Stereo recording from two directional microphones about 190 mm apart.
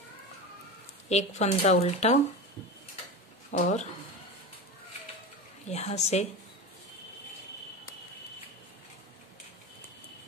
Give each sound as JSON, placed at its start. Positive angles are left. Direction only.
{"t": 1.0, "sound": "speech", "side_deg": 35}
{"t": 3.5, "sound": "speech", "side_deg": 40}
{"t": 5.7, "sound": "speech", "side_deg": 35}